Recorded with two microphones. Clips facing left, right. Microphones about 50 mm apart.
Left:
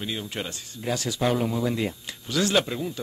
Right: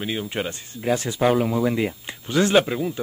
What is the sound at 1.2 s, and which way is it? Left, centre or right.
Speech, centre.